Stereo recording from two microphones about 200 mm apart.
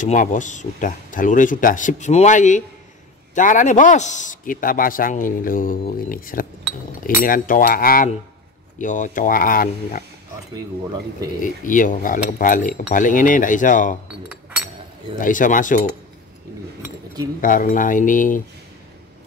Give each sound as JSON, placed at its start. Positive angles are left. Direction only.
{"t": 0.0, "sound": "a man's voice", "side_deg": 40}
{"t": 11.4, "sound": "speech", "side_deg": 40}
{"t": 14.3, "sound": "chink", "side_deg": -10}
{"t": 15.1, "sound": "speech", "side_deg": 40}
{"t": 17.4, "sound": "speech", "side_deg": 40}